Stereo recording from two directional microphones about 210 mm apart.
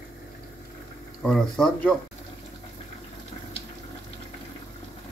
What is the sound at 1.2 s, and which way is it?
Speech, 5° left (ahead or behind).